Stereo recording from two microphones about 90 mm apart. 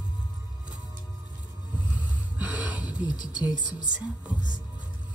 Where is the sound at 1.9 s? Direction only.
15° right (ahead or behind).